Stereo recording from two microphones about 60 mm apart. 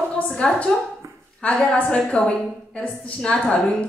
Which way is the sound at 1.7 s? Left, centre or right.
Centre.